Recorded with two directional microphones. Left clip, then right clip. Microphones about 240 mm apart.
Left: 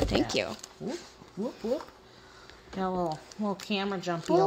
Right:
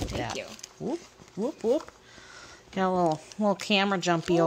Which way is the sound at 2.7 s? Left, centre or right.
Right.